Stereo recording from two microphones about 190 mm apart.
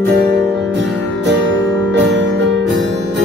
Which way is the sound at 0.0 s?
55° right (ahead or behind).